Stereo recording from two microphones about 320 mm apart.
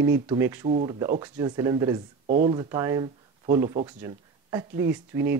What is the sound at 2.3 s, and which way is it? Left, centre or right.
Speech, right.